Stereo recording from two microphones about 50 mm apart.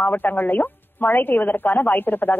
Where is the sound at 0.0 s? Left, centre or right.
Left.